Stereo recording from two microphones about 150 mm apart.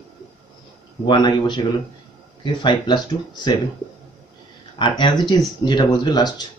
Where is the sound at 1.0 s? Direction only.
30° left (ahead or behind).